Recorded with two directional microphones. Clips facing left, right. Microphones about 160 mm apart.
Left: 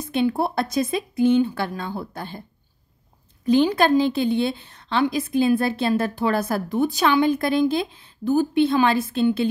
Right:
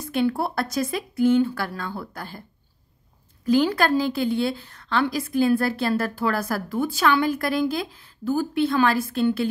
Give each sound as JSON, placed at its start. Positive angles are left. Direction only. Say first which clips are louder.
{"t": 0.0, "sound": "a woman's voice", "louder": "left 2 dB", "side_deg": 20}
{"t": 3.4, "sound": "a woman's voice", "louder": "left 2 dB", "side_deg": 20}